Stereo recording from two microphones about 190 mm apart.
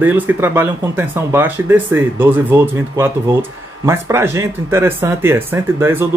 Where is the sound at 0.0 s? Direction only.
10° right (ahead or behind).